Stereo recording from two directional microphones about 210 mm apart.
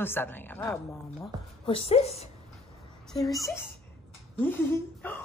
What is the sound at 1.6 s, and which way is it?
Speech, 25° left (ahead or behind).